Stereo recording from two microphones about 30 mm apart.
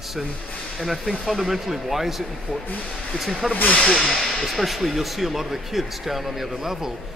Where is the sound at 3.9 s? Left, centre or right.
Centre.